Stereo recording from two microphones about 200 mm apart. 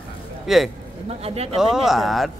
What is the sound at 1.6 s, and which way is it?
Speech, centre (ahead or behind).